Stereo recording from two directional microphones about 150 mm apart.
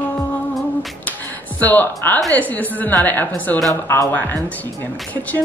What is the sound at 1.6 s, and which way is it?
Speech, 10° left (ahead or behind).